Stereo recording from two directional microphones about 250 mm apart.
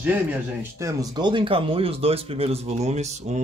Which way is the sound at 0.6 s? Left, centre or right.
Centre.